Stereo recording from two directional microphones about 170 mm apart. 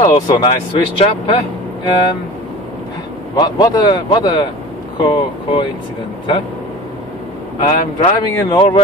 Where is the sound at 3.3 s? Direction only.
25° left (ahead or behind).